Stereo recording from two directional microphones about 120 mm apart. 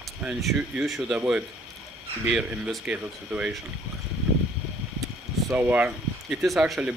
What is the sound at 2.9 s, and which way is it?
Speech, 10° right (ahead or behind).